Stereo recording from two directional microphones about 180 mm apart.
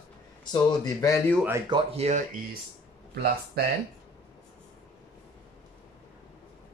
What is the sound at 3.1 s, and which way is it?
Speech, 60° right (ahead or behind).